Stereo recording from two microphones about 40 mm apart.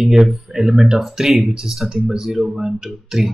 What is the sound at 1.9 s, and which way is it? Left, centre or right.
Speech, centre.